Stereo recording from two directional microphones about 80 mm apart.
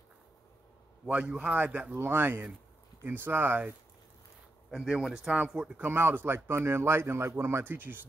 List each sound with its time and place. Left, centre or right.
1.0 s speech: centre
4.8 s speech: centre
5.9 s speech: right